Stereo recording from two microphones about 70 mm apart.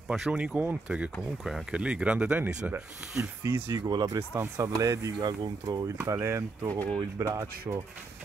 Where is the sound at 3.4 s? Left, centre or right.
Right.